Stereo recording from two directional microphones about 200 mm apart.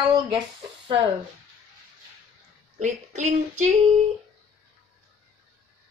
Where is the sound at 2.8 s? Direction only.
35° right (ahead or behind).